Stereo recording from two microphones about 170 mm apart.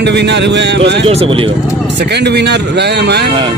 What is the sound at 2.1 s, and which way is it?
Speech, 80° right.